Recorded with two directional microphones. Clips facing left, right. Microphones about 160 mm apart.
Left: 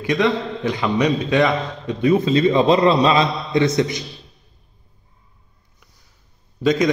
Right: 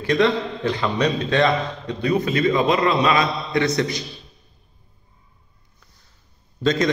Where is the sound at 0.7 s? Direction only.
15° left (ahead or behind).